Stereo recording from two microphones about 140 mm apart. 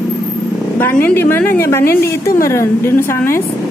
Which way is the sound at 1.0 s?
15° left (ahead or behind).